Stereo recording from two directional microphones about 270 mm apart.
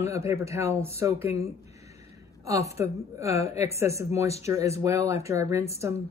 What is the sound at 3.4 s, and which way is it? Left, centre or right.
Speech, left.